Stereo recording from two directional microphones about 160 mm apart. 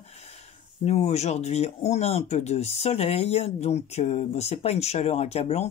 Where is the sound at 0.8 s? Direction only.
40° left (ahead or behind).